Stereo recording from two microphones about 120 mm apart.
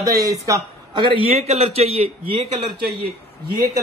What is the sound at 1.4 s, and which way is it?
A man's voice, 60° right (ahead or behind).